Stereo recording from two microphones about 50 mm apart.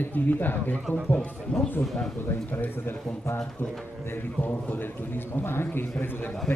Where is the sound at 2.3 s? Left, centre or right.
Left.